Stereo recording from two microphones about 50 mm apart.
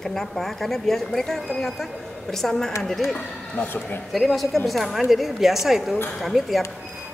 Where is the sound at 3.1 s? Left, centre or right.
Left.